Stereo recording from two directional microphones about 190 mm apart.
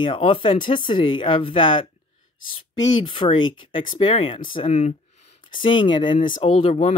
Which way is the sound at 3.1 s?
25° left (ahead or behind).